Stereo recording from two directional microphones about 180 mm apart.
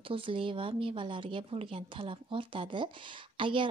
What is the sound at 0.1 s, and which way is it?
A woman's voice, 30° right (ahead or behind).